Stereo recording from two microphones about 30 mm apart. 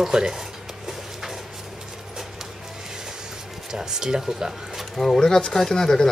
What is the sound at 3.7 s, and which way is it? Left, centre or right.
Speech, centre.